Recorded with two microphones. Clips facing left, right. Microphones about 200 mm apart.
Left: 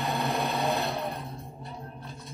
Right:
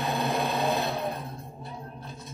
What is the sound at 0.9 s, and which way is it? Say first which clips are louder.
Vehicle: right 2 dB; centre (ahead or behind).